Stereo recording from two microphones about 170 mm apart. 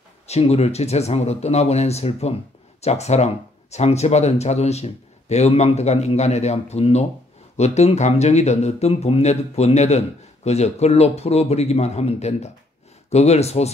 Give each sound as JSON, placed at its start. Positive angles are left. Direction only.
{"t": 0.3, "sound": "speech", "side_deg": 40}